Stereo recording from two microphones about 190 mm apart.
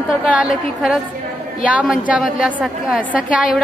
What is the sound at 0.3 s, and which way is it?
A woman's voice, 5° right (ahead or behind).